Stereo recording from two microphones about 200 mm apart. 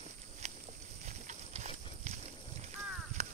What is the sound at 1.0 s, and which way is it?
Clip-clop, 35° right (ahead or behind).